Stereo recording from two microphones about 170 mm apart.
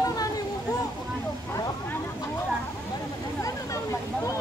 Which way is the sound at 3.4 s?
20° left (ahead or behind).